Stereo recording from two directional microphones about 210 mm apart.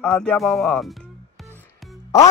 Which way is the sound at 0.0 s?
5° left (ahead or behind).